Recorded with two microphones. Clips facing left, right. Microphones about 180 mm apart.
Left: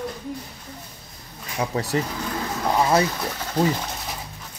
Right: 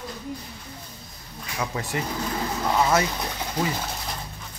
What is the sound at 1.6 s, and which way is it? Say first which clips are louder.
Speech: left 5 dB; 35° left (ahead or behind).